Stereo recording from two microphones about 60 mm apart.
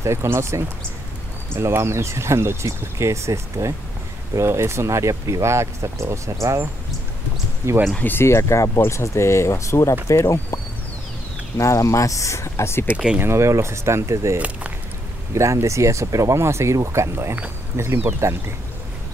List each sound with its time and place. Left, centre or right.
0.0 s speech: right
7.6 s speech: right
8.0 s speech: left
8.3 s speech: left
12.9 s speech: centre
13.2 s speech: right